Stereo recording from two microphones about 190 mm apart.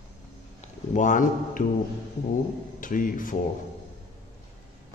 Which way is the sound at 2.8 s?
45° left (ahead or behind).